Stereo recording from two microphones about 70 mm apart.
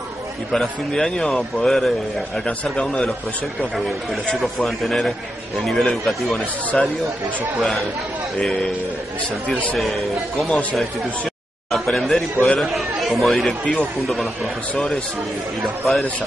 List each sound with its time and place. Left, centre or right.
0.5 s speech: centre
2.3 s speech: centre
4.4 s speech: centre
8.4 s speech: centre
9.8 s speech: centre
11.7 s speech: centre